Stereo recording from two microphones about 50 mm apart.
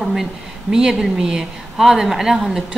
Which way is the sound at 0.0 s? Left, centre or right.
Centre.